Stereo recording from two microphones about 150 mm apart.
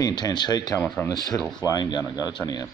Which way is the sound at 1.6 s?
25° left (ahead or behind).